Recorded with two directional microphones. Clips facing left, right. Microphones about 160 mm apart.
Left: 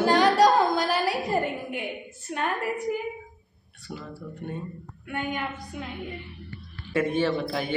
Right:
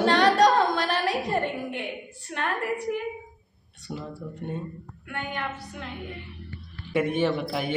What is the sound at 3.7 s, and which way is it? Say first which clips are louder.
Speech: right 3 dB; 20° right (ahead or behind).